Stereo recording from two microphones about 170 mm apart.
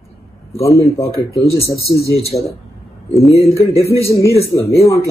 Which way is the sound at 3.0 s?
Centre (ahead or behind).